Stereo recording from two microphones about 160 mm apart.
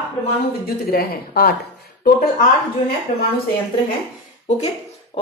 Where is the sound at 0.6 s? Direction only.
70° left (ahead or behind).